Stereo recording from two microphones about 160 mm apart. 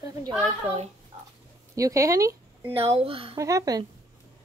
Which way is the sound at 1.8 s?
20° right (ahead or behind).